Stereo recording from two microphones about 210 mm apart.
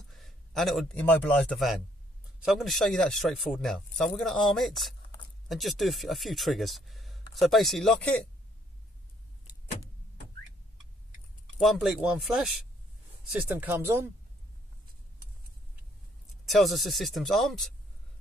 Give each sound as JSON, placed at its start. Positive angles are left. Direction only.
{"t": 0.1, "sound": "a man's voice", "side_deg": 0}
{"t": 11.6, "sound": "speech", "side_deg": 0}
{"t": 16.4, "sound": "speech", "side_deg": 0}